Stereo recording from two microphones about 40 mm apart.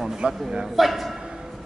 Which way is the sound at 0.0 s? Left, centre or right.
Centre.